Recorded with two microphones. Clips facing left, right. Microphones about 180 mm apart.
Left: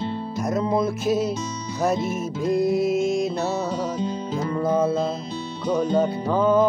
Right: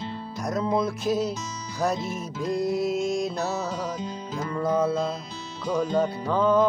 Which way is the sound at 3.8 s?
30° left (ahead or behind).